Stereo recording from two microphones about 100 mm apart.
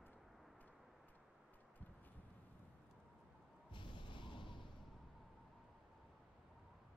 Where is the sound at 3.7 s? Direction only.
55° left (ahead or behind).